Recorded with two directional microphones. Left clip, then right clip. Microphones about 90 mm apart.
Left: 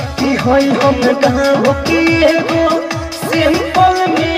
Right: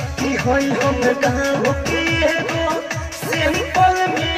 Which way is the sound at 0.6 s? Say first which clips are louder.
Left 6 dB; 50° left (ahead or behind).